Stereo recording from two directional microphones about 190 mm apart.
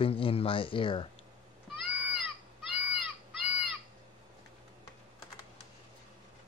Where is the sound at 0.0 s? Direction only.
30° left (ahead or behind).